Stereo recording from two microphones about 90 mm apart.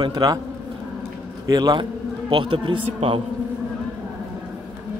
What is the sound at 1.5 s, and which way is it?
Speech, 50° right (ahead or behind).